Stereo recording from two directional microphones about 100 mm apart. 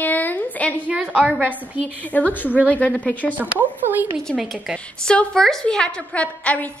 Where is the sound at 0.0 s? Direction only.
20° left (ahead or behind).